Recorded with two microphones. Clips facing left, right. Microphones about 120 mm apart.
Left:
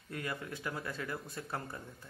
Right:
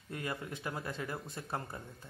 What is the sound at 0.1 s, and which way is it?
A man's voice, 25° right (ahead or behind).